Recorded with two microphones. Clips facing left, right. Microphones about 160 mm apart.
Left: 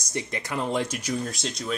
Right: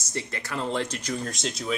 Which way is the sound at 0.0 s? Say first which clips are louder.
Left 2 dB; 15° left (ahead or behind).